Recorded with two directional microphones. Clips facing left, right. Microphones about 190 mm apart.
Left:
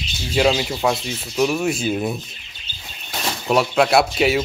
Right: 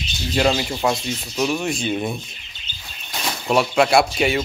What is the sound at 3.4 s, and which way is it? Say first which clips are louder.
Speech: even; centre (ahead or behind).